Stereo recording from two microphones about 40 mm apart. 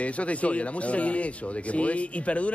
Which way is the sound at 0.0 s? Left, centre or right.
Left.